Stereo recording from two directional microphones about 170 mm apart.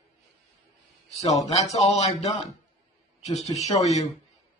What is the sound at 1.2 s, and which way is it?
A man's voice, 40° left (ahead or behind).